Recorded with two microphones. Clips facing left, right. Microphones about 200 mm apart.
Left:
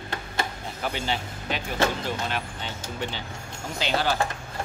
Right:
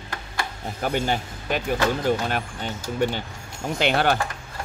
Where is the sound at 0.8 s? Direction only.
50° right (ahead or behind).